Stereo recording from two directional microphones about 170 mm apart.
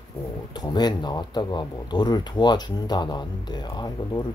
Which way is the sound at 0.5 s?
25° left (ahead or behind).